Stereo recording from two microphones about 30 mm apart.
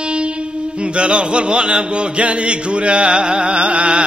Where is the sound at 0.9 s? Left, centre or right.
Right.